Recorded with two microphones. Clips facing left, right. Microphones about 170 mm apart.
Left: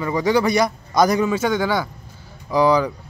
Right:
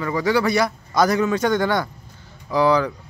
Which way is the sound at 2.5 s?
15° left (ahead or behind).